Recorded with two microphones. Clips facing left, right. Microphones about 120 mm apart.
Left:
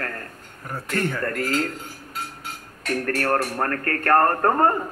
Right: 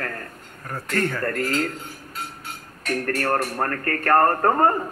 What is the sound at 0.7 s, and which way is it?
Speech, centre (ahead or behind).